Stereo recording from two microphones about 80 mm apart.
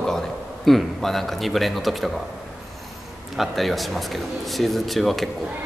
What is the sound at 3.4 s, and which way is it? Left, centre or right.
A man's voice, centre.